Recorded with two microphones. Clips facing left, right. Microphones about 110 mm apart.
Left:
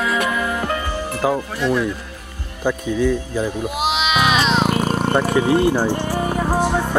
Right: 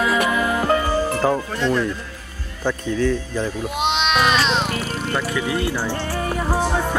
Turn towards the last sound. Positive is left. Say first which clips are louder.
# left 3 dB
turn(degrees=15)  # may be behind; listen again after turning